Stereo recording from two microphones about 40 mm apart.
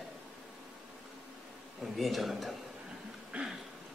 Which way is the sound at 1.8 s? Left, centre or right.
Centre.